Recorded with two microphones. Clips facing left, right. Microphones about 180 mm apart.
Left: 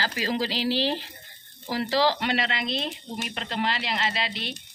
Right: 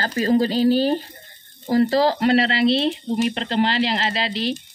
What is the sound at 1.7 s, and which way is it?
Speech, 45° right (ahead or behind).